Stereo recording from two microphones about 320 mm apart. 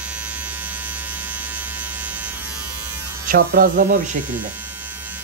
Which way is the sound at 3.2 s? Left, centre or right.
Right.